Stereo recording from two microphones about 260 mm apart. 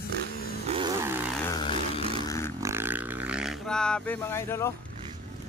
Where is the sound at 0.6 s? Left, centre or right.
Centre.